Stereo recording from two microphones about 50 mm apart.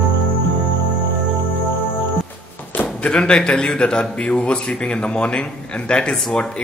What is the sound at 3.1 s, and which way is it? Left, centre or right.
Speech, centre.